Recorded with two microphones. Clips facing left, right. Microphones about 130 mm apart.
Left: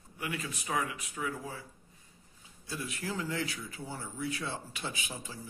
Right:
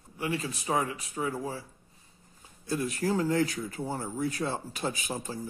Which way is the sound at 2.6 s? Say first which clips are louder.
Right 9 dB; 45° right (ahead or behind).